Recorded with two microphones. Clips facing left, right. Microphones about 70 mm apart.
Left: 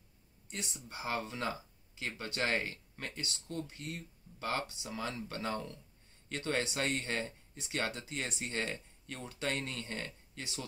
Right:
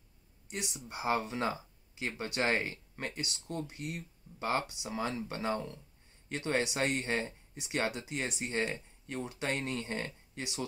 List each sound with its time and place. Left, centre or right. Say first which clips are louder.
0.5 s speech: right 3 dB; centre